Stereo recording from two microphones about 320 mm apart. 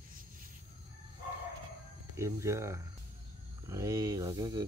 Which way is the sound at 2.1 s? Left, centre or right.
Centre.